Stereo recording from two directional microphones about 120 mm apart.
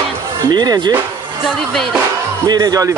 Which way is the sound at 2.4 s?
30° right (ahead or behind).